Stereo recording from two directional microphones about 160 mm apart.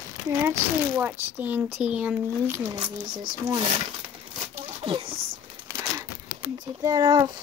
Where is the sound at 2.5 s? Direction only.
25° right (ahead or behind).